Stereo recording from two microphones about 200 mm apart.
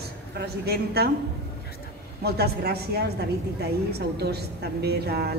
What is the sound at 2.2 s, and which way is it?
A woman's voice, 55° right (ahead or behind).